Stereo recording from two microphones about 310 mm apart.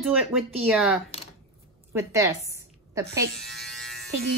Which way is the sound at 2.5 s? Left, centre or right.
Centre.